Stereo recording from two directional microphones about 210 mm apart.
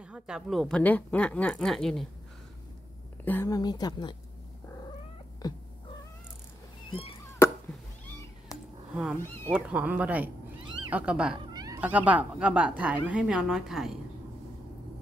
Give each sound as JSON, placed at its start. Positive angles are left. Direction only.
{"t": 0.0, "sound": "a woman's voice", "side_deg": -5}
{"t": 3.3, "sound": "speech", "side_deg": 15}
{"t": 5.4, "sound": "cat", "side_deg": 20}
{"t": 6.9, "sound": "cat", "side_deg": 25}
{"t": 7.4, "sound": "cat", "side_deg": 10}
{"t": 8.9, "sound": "a woman's voice", "side_deg": -5}
{"t": 11.4, "sound": "a woman's voice", "side_deg": -20}